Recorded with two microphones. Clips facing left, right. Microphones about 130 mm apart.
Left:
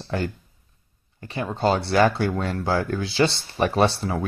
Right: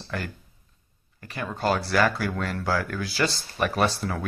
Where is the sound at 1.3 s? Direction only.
25° left (ahead or behind).